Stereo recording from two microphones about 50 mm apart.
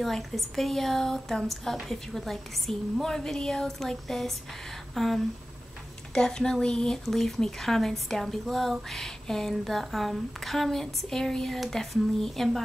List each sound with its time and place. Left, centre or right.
0.0 s speech: centre
6.1 s speech: centre